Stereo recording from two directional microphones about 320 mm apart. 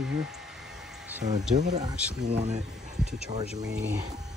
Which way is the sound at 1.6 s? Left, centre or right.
Right.